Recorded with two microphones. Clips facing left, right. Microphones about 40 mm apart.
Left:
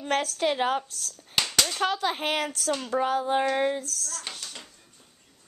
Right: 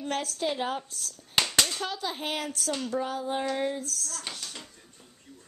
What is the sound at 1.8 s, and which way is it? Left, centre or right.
Speech, left.